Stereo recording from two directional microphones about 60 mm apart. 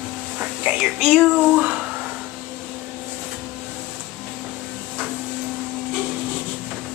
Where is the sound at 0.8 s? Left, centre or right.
Centre.